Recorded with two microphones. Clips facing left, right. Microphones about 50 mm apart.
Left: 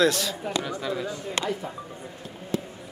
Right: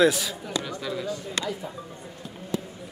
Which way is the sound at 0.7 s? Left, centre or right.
Centre.